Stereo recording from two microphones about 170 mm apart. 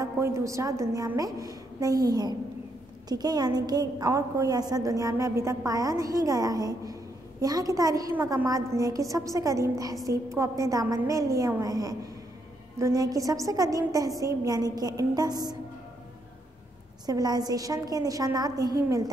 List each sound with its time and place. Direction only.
0.0 s a woman's voice: 20° right (ahead or behind)
17.0 s a woman's voice: 25° right (ahead or behind)